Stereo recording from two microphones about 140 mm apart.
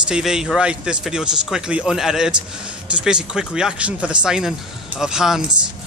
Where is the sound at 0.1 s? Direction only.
5° right (ahead or behind).